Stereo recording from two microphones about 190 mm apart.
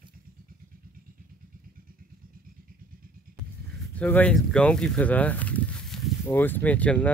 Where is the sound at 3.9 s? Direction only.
10° left (ahead or behind).